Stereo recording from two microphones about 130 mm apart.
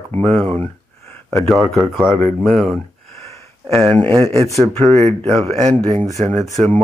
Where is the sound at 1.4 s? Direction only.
Centre (ahead or behind).